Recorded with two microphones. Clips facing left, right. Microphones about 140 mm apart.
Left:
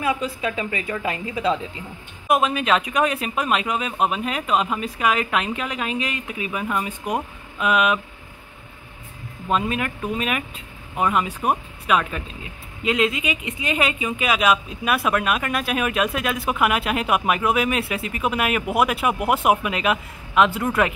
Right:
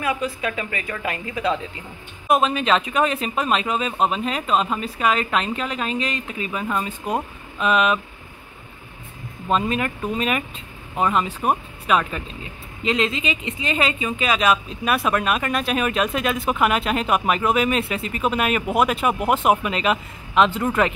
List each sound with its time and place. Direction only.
0.0 s a woman's voice: 20° left (ahead or behind)
2.2 s speech: 10° left (ahead or behind)
9.5 s speech: 5° left (ahead or behind)